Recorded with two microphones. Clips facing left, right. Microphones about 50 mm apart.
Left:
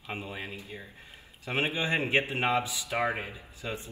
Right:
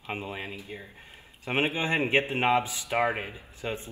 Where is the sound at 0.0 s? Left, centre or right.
Right.